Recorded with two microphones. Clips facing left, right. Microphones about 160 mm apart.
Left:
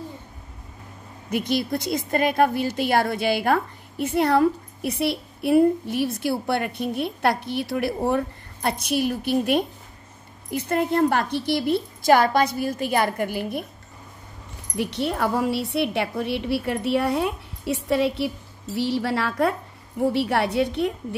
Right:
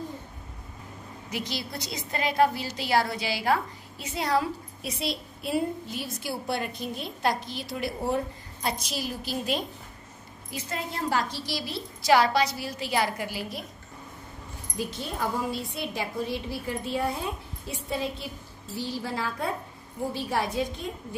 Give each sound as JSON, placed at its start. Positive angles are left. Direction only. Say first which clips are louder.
{"t": 1.3, "sound": "a woman's voice", "louder": "left 10 dB", "side_deg": 55}
{"t": 14.8, "sound": "a woman's voice", "louder": "left 7 dB", "side_deg": 70}